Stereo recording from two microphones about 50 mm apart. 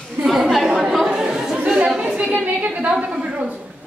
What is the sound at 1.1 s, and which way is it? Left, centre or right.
Chatter, centre.